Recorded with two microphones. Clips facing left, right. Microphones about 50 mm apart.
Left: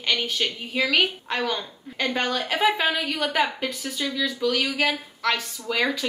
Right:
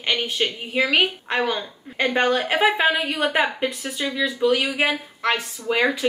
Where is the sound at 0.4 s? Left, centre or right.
Right.